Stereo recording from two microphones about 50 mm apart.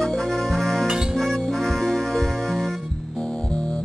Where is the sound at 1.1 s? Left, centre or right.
Centre.